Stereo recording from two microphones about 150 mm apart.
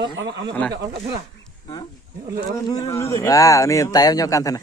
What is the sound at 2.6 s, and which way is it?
Speech, 25° left (ahead or behind).